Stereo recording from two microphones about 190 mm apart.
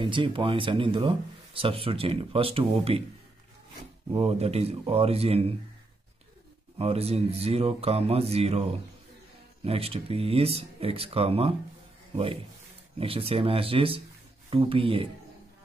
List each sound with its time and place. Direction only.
0.0 s speech: 25° right (ahead or behind)
4.1 s speech: 30° right (ahead or behind)
6.8 s speech: 30° right (ahead or behind)
13.0 s speech: 30° right (ahead or behind)